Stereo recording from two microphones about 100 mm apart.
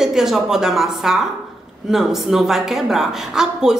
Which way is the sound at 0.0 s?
5° right (ahead or behind).